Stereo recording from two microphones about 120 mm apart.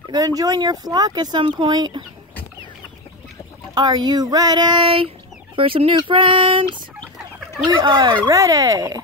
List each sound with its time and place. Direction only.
0.1 s speech: 30° right (ahead or behind)
3.7 s speech: 35° right (ahead or behind)
7.0 s chicken: 5° left (ahead or behind)
7.7 s speech: 40° right (ahead or behind)